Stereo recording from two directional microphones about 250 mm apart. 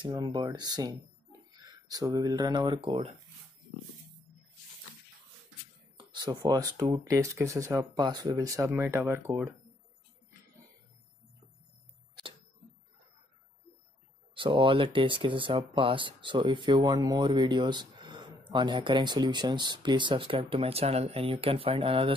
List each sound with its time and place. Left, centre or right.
0.0 s speech: centre
5.9 s speech: centre
14.3 s speech: centre